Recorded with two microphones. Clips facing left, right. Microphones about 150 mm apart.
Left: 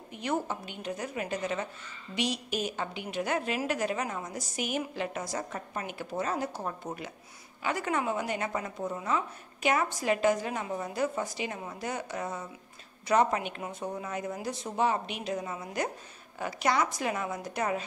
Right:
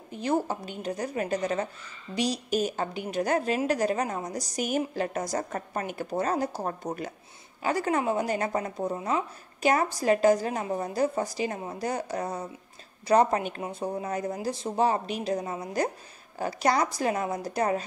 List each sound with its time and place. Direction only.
0.1 s a woman's voice: 35° right (ahead or behind)
13.6 s a woman's voice: 30° right (ahead or behind)